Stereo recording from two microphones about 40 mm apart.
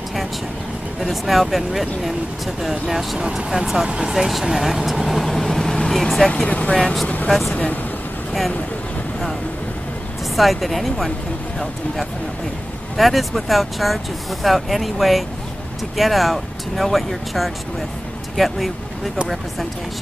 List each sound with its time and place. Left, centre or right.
1.0 s speech: centre
6.4 s speech: left
6.7 s speech: centre
7.2 s speech: centre
7.5 s speech: left
10.3 s speech: centre
12.9 s speech: centre